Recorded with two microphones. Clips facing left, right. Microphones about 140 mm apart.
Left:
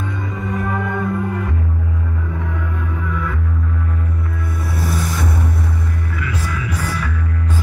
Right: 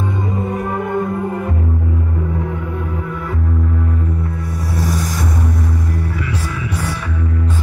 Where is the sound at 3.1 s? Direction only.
45° right (ahead or behind).